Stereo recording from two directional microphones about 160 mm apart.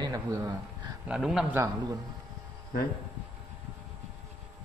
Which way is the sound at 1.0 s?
5° right (ahead or behind).